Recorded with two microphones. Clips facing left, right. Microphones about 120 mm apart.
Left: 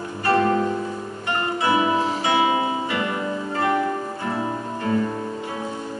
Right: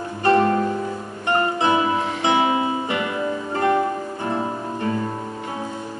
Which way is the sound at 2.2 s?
25° right (ahead or behind).